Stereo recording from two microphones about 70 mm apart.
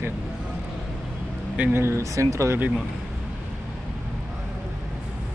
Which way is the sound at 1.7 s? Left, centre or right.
Right.